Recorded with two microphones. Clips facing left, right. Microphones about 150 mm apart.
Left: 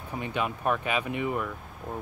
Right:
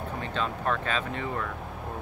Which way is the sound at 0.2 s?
15° left (ahead or behind).